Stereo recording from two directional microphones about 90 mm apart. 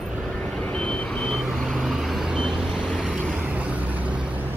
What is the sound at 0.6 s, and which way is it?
Vehicle, 10° left (ahead or behind).